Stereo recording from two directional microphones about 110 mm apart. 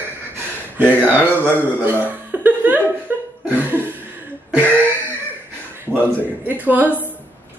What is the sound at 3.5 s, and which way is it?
Cough, 15° right (ahead or behind).